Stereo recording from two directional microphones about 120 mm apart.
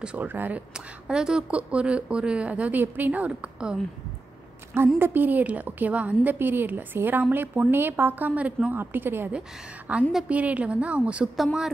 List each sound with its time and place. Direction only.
0.0 s a woman's voice: 10° right (ahead or behind)
4.9 s a woman's voice: 15° right (ahead or behind); by 11.7 s centre (ahead or behind)